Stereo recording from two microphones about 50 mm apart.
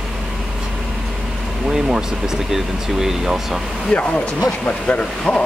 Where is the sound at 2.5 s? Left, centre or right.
Centre.